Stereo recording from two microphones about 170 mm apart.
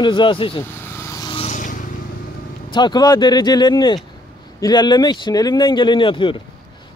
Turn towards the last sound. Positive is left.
turn(degrees=30)  # may be behind; listen again after turning